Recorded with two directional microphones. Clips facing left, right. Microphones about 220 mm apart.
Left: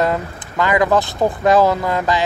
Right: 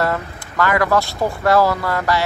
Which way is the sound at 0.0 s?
20° left (ahead or behind).